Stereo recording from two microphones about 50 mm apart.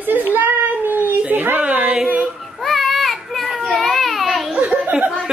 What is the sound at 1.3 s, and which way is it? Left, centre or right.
Speech, right.